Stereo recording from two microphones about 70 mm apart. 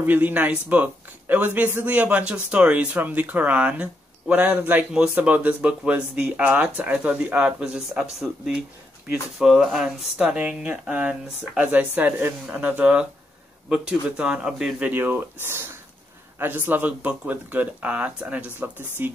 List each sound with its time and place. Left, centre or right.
0.0 s a man's voice: right
14.9 s a man's voice: right